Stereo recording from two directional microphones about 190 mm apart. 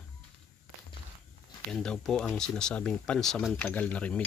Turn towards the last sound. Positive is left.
turn(degrees=5)  # may be behind; listen again after turning